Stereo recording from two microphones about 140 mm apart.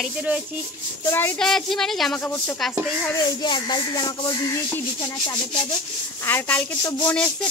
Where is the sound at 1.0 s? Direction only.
15° left (ahead or behind).